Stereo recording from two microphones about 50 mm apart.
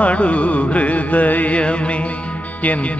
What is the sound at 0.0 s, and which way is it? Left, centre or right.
Music, left.